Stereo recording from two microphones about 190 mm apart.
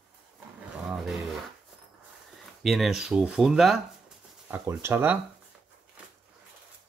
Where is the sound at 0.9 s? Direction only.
Centre (ahead or behind).